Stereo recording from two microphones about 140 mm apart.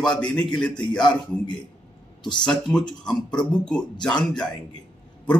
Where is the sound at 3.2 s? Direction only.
30° left (ahead or behind).